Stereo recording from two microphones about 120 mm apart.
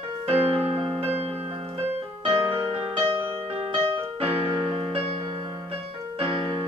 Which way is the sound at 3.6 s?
50° right (ahead or behind).